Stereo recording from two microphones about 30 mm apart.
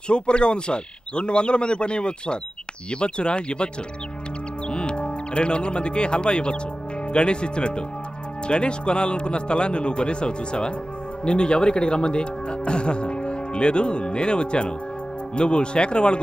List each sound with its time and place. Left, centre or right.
0.1 s speech: left